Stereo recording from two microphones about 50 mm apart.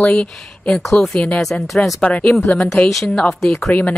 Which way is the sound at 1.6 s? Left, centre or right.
Centre.